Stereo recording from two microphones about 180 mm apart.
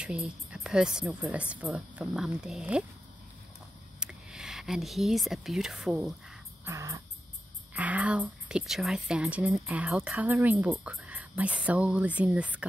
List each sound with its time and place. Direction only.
0.0 s a woman's voice: 5° right (ahead or behind)
4.0 s speech: 5° right (ahead or behind)
6.6 s crow: 15° right (ahead or behind)
7.7 s speech: 10° right (ahead or behind)